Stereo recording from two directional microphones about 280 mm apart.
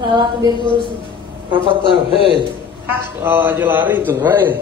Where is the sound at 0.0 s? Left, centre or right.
Centre.